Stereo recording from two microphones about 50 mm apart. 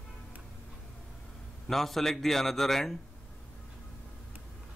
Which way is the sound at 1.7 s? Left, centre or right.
Centre.